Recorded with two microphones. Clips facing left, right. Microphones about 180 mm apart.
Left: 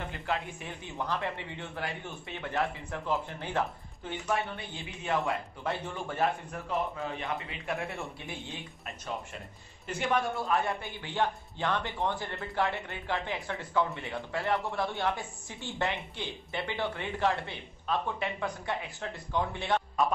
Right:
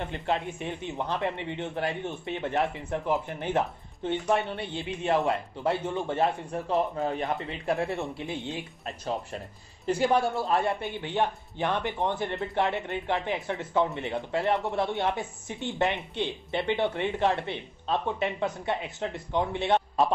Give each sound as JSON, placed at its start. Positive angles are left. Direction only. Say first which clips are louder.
{"t": 0.1, "sound": "speech", "louder": "right 5 dB", "side_deg": -20}
{"t": 7.0, "sound": "speech", "louder": "right 6 dB", "side_deg": -40}